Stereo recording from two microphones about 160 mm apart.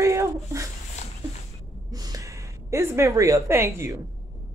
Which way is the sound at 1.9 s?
25° right (ahead or behind).